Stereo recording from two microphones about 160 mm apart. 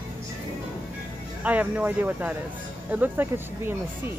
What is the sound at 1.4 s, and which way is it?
A woman's voice, 10° right (ahead or behind).